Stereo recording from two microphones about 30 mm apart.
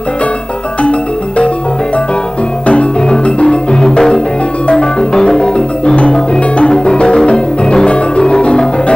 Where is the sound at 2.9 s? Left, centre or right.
Left.